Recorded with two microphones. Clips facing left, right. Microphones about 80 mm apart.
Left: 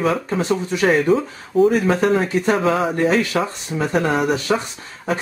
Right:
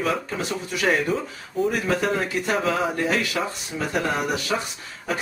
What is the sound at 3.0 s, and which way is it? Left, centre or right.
Speech, left.